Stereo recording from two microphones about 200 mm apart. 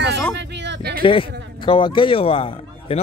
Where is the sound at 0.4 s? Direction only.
60° right (ahead or behind).